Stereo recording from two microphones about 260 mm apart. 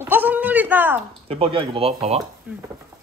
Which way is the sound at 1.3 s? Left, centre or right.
Right.